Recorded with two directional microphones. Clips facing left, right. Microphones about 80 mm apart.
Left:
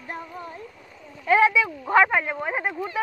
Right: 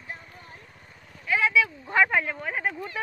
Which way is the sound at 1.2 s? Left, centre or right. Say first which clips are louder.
Left 7 dB; left.